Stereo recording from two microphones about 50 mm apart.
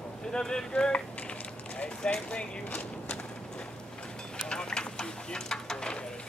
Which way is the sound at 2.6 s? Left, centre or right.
Left.